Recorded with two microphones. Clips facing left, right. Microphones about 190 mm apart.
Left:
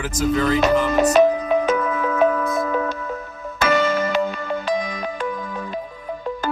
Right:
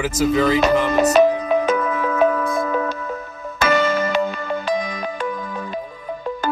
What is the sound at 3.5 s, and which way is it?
Music, 65° right (ahead or behind).